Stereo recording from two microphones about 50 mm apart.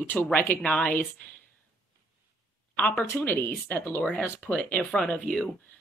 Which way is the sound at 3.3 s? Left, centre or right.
Left.